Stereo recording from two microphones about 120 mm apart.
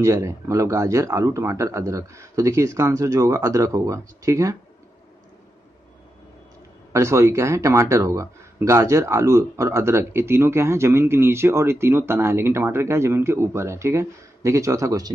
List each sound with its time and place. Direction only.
0.0 s speech: 25° right (ahead or behind)
6.9 s speech: 25° right (ahead or behind)